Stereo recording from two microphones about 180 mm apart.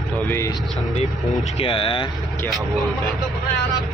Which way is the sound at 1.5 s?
30° left (ahead or behind).